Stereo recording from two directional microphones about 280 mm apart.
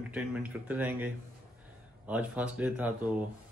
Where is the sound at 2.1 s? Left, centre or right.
Centre.